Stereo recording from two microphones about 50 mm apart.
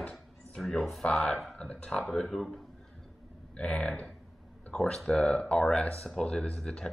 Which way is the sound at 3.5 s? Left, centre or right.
Left.